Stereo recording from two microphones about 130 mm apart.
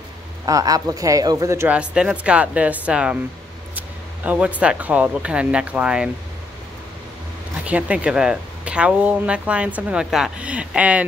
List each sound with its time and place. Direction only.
0.5 s speech: 30° right (ahead or behind)
1.7 s speech: 10° right (ahead or behind)
7.6 s speech: 10° right (ahead or behind)